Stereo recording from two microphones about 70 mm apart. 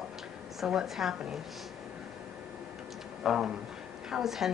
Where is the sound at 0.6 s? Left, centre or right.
Centre.